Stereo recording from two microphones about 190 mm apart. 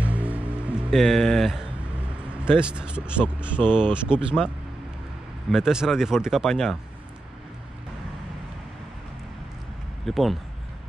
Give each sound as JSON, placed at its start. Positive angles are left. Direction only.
{"t": 0.0, "sound": "music", "side_deg": -10}
{"t": 2.4, "sound": "speech", "side_deg": -5}
{"t": 5.5, "sound": "speech", "side_deg": -5}
{"t": 10.0, "sound": "speech", "side_deg": 0}